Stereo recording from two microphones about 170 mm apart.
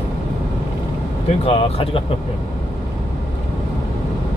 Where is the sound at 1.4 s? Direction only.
35° left (ahead or behind).